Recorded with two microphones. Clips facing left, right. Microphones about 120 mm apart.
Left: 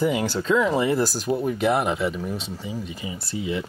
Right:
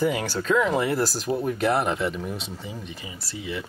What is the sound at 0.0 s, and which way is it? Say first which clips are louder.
Speech: left 2 dB; 10° left (ahead or behind).